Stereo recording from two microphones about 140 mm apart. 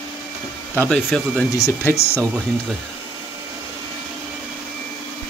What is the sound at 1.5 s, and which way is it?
Speech, 20° left (ahead or behind).